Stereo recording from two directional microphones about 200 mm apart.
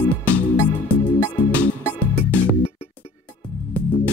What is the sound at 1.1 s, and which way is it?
Music, 20° left (ahead or behind).